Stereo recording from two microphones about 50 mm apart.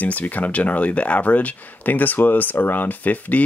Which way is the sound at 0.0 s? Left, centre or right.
Left.